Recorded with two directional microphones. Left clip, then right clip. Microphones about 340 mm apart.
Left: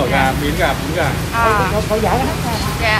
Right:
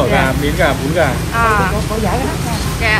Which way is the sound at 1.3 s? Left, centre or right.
Centre.